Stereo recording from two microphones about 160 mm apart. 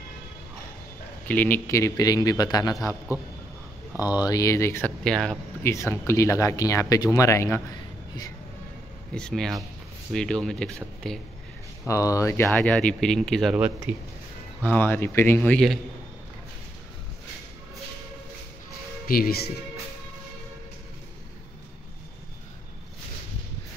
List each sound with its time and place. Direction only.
1.2 s speech: 10° left (ahead or behind)
4.1 s speech: 25° left (ahead or behind)
5.0 s speech: 5° left (ahead or behind)
5.6 s speech: 15° left (ahead or behind)
9.1 s speech: 5° left (ahead or behind)
11.9 s speech: 20° left (ahead or behind); by 13.6 s centre (ahead or behind)
13.6 s a man's voice: 10° right (ahead or behind)
14.6 s speech: 10° left (ahead or behind)
19.0 s speech: 65° left (ahead or behind)